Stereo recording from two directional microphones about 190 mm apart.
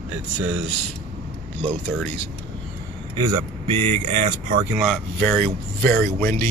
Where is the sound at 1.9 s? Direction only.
Centre (ahead or behind).